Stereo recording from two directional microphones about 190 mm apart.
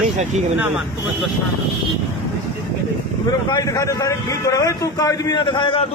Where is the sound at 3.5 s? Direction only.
20° left (ahead or behind).